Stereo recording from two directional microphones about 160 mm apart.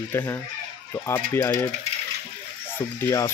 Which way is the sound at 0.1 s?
15° left (ahead or behind).